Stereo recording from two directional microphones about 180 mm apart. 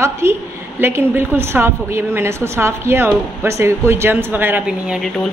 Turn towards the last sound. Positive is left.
turn(degrees=0)  # may be behind; listen again after turning